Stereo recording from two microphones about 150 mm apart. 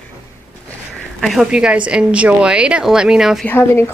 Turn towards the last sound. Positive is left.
turn(degrees=15)  # may be behind; listen again after turning